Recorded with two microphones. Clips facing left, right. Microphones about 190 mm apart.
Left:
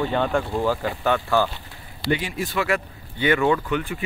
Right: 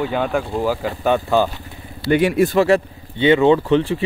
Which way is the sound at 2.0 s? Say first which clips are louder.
Right 10 dB; 60° right (ahead or behind).